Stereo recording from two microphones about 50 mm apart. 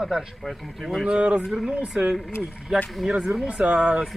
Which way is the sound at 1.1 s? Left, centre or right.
Right.